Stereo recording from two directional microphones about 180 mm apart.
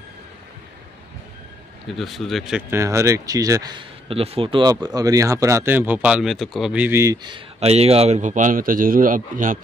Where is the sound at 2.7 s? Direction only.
15° right (ahead or behind).